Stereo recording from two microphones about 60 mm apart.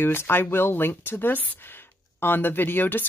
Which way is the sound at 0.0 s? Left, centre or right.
Left.